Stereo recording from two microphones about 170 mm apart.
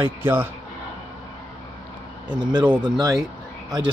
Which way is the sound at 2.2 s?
25° right (ahead or behind).